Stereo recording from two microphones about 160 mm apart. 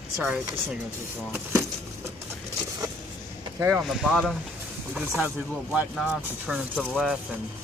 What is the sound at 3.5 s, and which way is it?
Speech, 15° right (ahead or behind).